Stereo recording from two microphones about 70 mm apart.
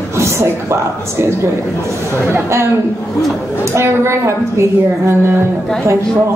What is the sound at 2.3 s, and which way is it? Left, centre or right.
Speech, right.